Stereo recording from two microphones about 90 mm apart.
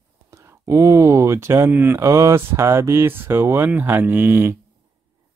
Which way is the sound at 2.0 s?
35° right (ahead or behind).